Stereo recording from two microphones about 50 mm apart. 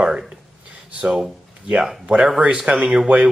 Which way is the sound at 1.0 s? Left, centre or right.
Centre.